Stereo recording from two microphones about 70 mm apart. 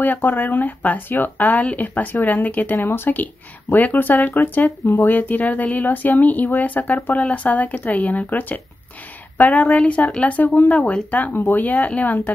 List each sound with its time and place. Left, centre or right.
0.0 s speech: left